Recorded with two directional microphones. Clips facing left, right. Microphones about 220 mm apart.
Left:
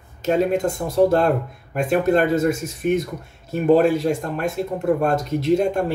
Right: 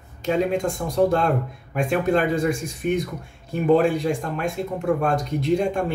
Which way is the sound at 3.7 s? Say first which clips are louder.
Left 2 dB; centre (ahead or behind).